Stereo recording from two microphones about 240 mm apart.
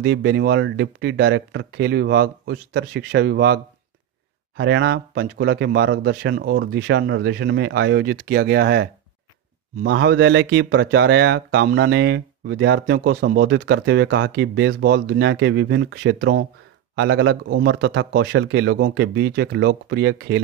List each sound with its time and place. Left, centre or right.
0.0 s speech: right
9.8 s speech: right